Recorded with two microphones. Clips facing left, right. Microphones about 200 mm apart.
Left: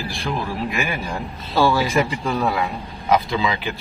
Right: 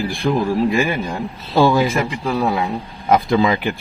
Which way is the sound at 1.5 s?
15° right (ahead or behind).